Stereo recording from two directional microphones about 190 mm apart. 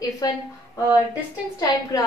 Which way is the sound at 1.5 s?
20° left (ahead or behind).